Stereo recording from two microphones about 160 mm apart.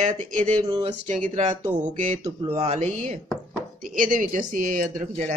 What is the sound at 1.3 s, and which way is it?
Speech, 50° right (ahead or behind).